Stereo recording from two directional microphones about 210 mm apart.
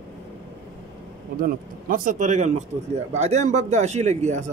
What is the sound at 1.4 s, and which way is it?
A man's voice, 40° right (ahead or behind).